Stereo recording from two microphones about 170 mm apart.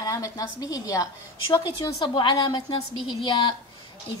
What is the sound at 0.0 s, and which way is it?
A woman's voice, 20° left (ahead or behind).